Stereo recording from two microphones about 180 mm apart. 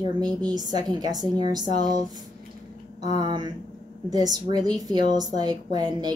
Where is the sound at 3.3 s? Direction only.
25° right (ahead or behind).